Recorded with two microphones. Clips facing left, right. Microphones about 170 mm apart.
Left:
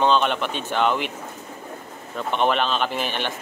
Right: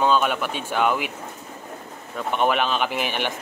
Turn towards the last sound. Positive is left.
turn(degrees=-10)  # may be behind; listen again after turning